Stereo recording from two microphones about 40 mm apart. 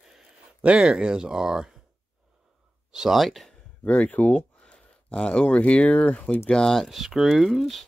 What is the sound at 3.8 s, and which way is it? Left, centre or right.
Speech, left.